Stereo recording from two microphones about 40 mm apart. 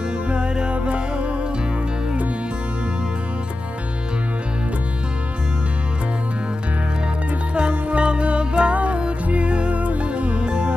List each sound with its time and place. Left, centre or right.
0.3 s music: right
7.5 s music: right